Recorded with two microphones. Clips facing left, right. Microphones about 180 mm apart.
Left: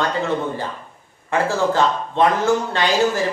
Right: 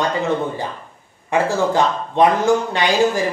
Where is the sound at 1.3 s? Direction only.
15° right (ahead or behind).